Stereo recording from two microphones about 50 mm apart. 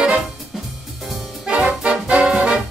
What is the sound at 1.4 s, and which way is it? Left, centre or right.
Music, right.